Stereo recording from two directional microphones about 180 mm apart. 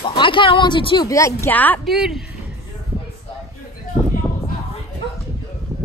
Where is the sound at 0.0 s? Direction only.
25° left (ahead or behind); by 1.8 s 10° left (ahead or behind).